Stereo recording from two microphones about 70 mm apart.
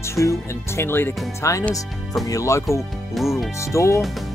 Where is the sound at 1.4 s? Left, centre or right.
Left.